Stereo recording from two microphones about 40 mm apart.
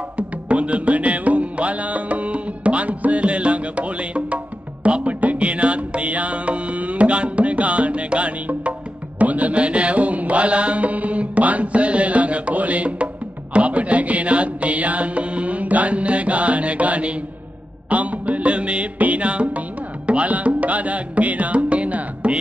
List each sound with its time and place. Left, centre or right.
0.5 s music: right
9.2 s mantra: right
17.8 s music: right